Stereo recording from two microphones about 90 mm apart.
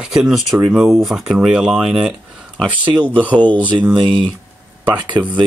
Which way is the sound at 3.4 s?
20° left (ahead or behind).